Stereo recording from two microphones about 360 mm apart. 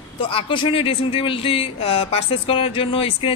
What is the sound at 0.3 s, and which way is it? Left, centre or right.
Speech, centre.